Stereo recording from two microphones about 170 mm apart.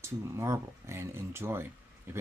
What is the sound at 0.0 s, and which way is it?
Speech, 15° right (ahead or behind).